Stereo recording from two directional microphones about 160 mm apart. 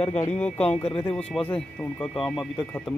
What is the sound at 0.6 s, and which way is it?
Speech, 40° left (ahead or behind).